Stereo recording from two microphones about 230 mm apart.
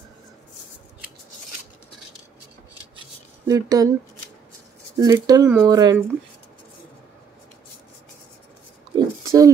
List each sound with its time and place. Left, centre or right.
3.4 s speech: centre
4.9 s speech: centre
8.9 s a sound: centre